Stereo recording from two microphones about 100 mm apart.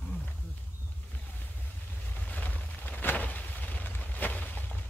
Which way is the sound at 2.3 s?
15° left (ahead or behind).